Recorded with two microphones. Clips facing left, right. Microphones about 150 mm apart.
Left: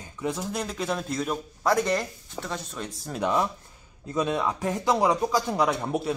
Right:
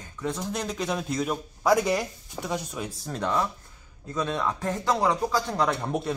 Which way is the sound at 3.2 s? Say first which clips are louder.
Left 2 dB; 15° left (ahead or behind).